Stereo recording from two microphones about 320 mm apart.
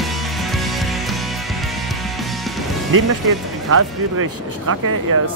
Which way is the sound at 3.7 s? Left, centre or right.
Right.